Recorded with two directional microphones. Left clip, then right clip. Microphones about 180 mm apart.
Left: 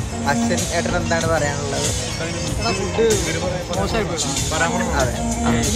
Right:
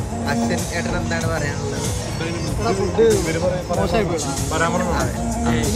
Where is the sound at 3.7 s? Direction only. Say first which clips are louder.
Right 2 dB; 15° right (ahead or behind).